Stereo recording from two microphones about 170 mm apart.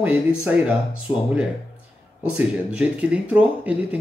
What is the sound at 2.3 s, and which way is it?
Speech, 5° right (ahead or behind).